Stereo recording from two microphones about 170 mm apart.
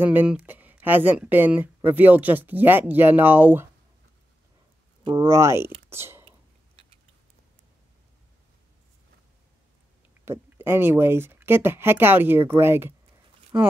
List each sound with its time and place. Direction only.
0.0 s speech: 10° right (ahead or behind)
5.1 s speech: 15° right (ahead or behind)
10.2 s speech: 15° right (ahead or behind)